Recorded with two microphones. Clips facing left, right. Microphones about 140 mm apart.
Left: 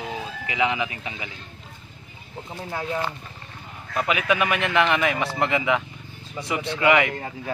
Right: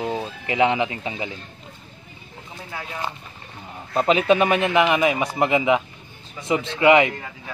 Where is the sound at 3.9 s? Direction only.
30° right (ahead or behind).